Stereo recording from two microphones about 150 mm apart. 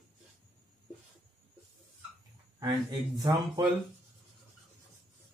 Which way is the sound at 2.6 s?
25° right (ahead or behind).